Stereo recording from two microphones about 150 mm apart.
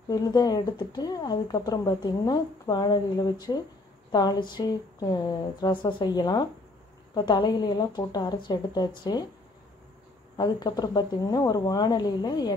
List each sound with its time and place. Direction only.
0.1 s a woman's voice: 25° left (ahead or behind)
10.3 s a woman's voice: 30° left (ahead or behind)